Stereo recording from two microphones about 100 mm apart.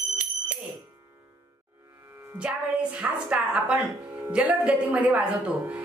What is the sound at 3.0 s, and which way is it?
A woman's voice, 15° right (ahead or behind).